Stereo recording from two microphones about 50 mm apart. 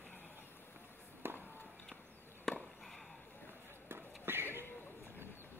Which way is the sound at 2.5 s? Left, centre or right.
Centre.